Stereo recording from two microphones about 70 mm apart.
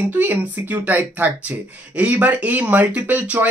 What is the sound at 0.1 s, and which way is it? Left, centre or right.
Speech, right.